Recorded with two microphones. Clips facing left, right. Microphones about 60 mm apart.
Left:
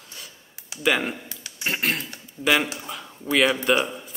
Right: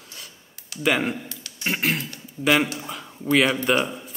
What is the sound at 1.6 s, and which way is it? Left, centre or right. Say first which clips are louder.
Speech: right 1 dB; centre.